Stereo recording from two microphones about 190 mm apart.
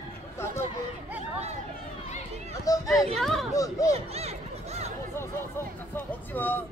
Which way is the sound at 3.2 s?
Centre (ahead or behind).